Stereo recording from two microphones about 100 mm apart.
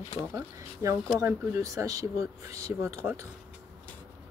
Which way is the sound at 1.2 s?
25° right (ahead or behind).